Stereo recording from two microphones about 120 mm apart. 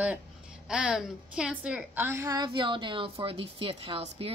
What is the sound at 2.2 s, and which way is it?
A woman's voice, 35° right (ahead or behind).